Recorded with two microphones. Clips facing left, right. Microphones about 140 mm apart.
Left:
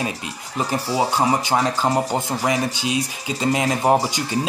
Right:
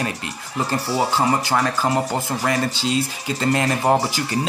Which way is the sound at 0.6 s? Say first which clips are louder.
Even; 15° left (ahead or behind).